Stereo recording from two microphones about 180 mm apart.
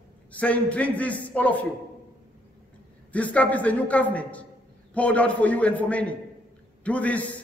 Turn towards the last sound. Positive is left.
turn(degrees=10)  # may be behind; listen again after turning